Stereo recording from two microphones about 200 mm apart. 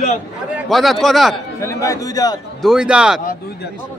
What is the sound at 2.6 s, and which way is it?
Speech, 5° right (ahead or behind).